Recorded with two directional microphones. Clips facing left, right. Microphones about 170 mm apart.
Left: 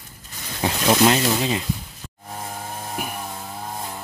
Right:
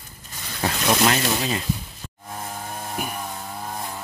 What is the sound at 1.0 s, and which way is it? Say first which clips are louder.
Speech: left 3 dB; 20° left (ahead or behind).